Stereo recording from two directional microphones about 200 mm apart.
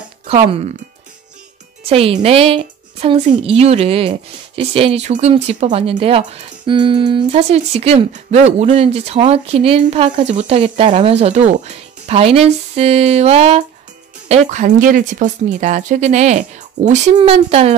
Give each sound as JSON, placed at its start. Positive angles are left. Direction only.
{"t": 0.3, "sound": "a woman's voice", "side_deg": -30}
{"t": 1.9, "sound": "a woman's voice", "side_deg": -30}